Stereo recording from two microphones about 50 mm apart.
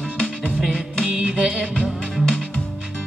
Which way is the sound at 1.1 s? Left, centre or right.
Right.